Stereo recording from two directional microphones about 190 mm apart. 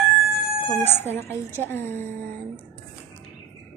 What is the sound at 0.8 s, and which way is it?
A woman's voice, 10° left (ahead or behind).